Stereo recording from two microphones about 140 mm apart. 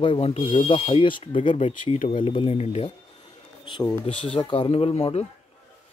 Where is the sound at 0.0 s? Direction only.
45° left (ahead or behind).